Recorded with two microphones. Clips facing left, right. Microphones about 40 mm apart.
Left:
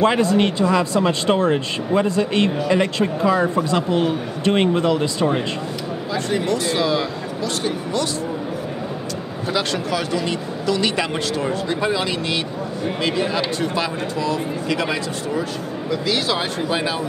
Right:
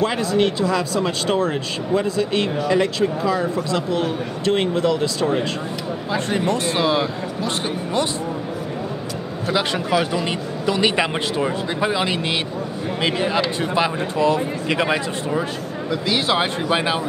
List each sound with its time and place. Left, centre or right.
0.0 s speech: left
6.1 s a man's voice: right
9.5 s a man's voice: centre